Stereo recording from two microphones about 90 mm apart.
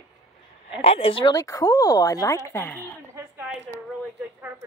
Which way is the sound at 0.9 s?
90° left.